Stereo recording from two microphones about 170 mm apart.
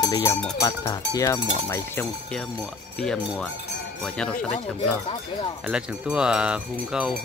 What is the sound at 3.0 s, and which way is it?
Speech, 5° left (ahead or behind).